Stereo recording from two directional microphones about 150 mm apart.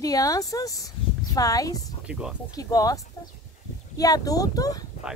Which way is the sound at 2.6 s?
25° left (ahead or behind).